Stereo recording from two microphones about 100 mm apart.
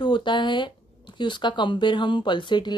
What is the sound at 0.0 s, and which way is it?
Speech, 50° left (ahead or behind).